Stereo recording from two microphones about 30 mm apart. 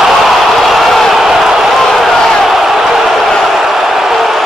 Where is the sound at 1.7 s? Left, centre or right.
Centre.